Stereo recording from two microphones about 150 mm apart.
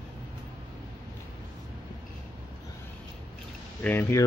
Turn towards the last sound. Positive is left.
turn(degrees=15)  # may be behind; listen again after turning